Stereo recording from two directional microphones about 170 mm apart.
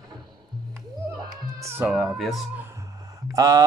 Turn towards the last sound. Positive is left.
turn(degrees=-20)  # may be behind; listen again after turning